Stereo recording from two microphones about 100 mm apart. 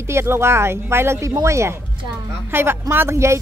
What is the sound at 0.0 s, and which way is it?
A woman's voice, 25° right (ahead or behind).